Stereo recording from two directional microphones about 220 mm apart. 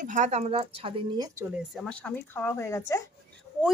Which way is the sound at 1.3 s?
5° right (ahead or behind).